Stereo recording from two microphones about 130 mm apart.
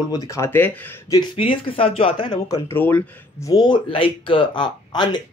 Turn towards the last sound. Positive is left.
turn(degrees=35)  # may be behind; listen again after turning